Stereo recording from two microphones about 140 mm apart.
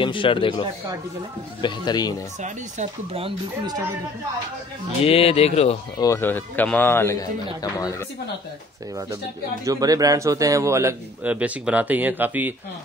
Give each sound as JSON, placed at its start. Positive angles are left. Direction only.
{"t": 0.0, "sound": "speech", "side_deg": 35}
{"t": 2.4, "sound": "speech", "side_deg": -50}
{"t": 5.0, "sound": "speech", "side_deg": 45}
{"t": 5.9, "sound": "a man's voice", "side_deg": 20}
{"t": 9.7, "sound": "a man's voice", "side_deg": -25}